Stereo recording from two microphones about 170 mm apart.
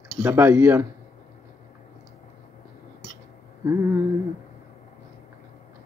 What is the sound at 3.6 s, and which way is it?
Speech, 15° right (ahead or behind).